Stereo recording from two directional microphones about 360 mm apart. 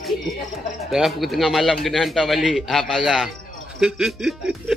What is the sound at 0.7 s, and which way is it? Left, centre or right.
Speech, centre.